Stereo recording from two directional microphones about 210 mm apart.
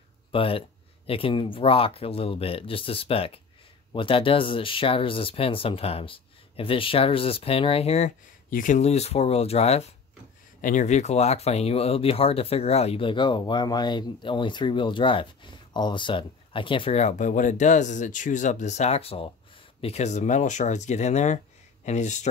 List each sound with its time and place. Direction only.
0.3 s speech: 25° left (ahead or behind)